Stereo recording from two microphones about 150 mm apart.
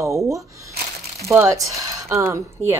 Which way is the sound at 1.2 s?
15° right (ahead or behind).